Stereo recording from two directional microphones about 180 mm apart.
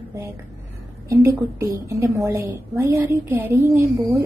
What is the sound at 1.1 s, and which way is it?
A woman's voice, 15° right (ahead or behind).